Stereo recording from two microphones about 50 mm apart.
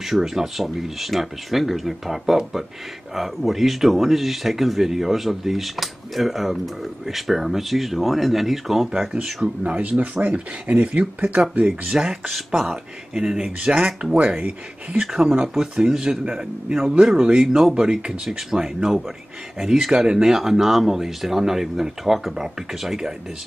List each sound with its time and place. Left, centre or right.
0.0 s speech: centre
9.1 s speech: centre
9.6 s speech: right
11.9 s speech: centre